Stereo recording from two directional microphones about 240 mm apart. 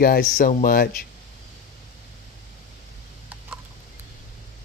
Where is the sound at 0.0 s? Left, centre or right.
Left.